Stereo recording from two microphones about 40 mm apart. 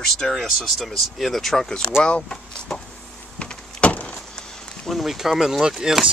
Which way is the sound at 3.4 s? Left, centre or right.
Left.